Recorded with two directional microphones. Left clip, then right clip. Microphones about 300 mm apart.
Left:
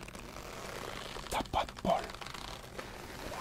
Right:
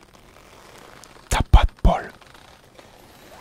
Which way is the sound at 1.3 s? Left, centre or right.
Right.